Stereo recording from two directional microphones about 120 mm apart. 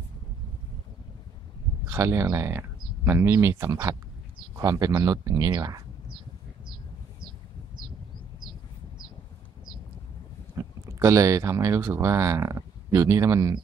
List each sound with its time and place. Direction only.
1.9 s speech: 20° right (ahead or behind)
10.6 s a sound: 25° right (ahead or behind)
10.9 s speech: 25° right (ahead or behind)